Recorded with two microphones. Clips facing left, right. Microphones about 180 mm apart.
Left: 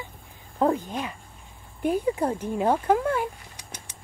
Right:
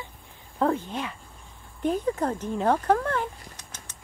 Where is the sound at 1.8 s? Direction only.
10° left (ahead or behind).